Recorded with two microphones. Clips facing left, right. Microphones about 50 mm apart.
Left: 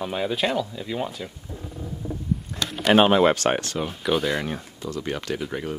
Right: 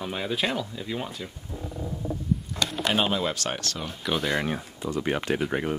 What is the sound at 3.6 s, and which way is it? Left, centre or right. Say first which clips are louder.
Speech: left 6 dB; centre.